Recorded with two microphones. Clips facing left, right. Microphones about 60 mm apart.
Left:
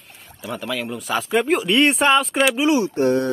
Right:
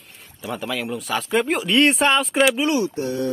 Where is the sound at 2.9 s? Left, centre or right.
Left.